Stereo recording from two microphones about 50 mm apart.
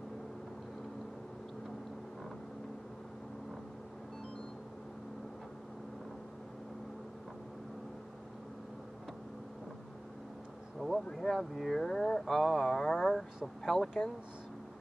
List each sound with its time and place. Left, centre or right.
10.8 s insect: centre
11.1 s speech: centre